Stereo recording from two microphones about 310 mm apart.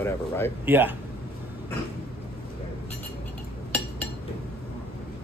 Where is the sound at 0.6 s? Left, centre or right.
Centre.